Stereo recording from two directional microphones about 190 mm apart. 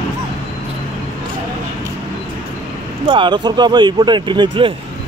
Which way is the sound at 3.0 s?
25° right (ahead or behind).